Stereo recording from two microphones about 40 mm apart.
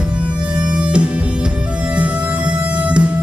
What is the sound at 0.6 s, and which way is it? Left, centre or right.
Music, right.